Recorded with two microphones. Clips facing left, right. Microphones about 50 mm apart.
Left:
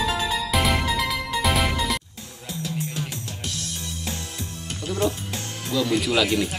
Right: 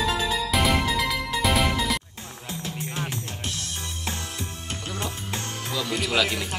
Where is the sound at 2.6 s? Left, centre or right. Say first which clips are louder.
Left 2 dB; right.